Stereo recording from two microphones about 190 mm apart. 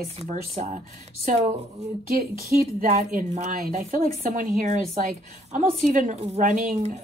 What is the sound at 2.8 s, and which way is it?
Speech, 45° right (ahead or behind).